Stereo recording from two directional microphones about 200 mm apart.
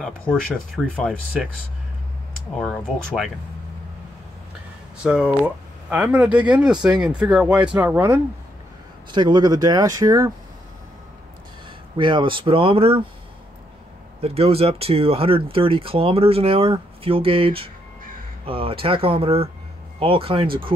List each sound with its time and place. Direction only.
0.8 s speech: 5° left (ahead or behind)
2.6 s speech: centre (ahead or behind)
5.0 s speech: 5° right (ahead or behind)
9.1 s speech: 20° right (ahead or behind)
12.0 s speech: 25° right (ahead or behind)
14.2 s speech: 30° right (ahead or behind)